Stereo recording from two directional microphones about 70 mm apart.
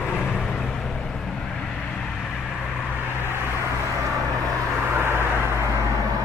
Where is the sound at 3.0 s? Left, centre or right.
Left.